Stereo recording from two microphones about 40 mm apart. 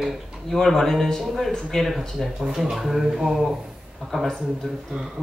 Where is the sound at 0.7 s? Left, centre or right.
Centre.